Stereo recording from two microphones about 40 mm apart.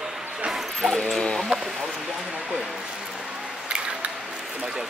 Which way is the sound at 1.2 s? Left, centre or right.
Centre.